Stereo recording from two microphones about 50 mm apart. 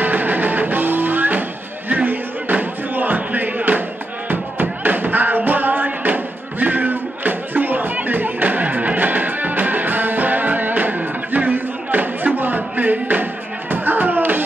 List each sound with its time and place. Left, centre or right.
0.0 s music: right